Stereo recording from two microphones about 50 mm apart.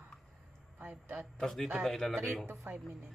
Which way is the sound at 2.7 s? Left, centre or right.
Right.